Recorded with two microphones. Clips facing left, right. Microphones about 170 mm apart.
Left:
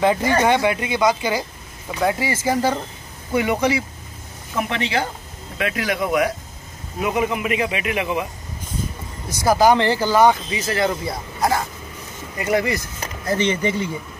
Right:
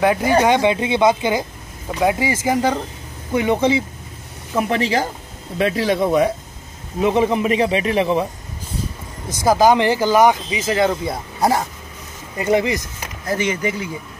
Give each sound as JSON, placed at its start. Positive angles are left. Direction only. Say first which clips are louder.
{"t": 0.0, "sound": "speech", "louder": "right 2 dB", "side_deg": -10}
{"t": 4.6, "sound": "speech", "louder": "right 4 dB", "side_deg": -35}
{"t": 9.3, "sound": "speech", "louder": "right 1 dB", "side_deg": -20}
{"t": 12.4, "sound": "speech", "louder": "right 3 dB", "side_deg": -20}
{"t": 13.4, "sound": "speech", "louder": "left 2 dB", "side_deg": -10}